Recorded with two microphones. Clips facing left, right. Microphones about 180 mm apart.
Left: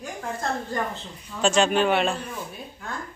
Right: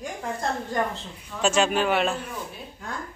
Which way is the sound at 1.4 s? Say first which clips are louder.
Left 2 dB; 5° right (ahead or behind).